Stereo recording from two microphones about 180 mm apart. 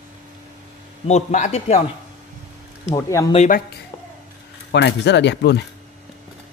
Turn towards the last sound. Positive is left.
turn(degrees=70)  # may be behind; listen again after turning